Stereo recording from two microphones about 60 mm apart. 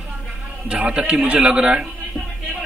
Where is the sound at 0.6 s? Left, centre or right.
Right.